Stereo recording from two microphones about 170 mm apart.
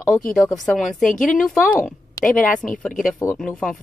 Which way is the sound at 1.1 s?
50° left (ahead or behind).